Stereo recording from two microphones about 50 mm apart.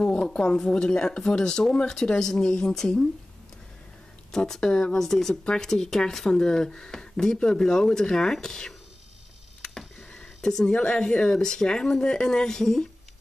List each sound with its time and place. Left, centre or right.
0.0 s speech: left
4.3 s speech: centre
5.3 s speech: centre
9.6 s a sound: centre
10.8 s speech: centre